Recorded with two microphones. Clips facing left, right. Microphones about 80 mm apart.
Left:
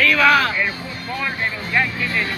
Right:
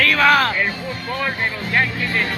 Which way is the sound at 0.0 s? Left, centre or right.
Right.